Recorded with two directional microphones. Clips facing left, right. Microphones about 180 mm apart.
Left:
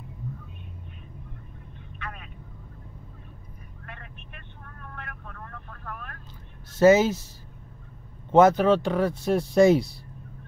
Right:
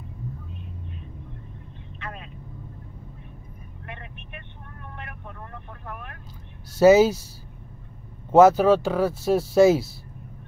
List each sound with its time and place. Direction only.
3.8 s vehicle: 20° right (ahead or behind)
6.7 s speech: 10° right (ahead or behind)
8.3 s speech: 5° right (ahead or behind)